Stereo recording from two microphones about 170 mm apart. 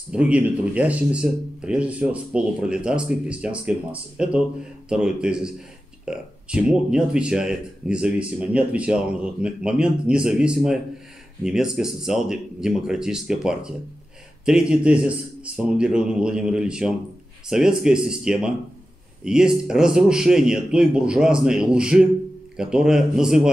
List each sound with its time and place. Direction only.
0.1 s speech: 5° right (ahead or behind)